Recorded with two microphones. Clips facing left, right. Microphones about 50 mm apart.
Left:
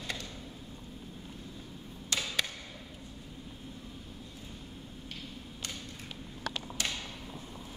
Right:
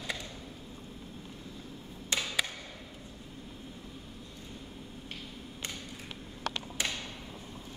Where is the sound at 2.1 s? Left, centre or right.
Right.